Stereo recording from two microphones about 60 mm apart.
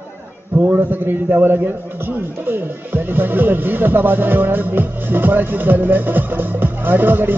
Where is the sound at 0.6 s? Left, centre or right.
Right.